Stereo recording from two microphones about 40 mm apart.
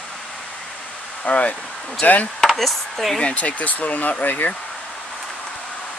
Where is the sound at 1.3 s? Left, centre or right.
Left.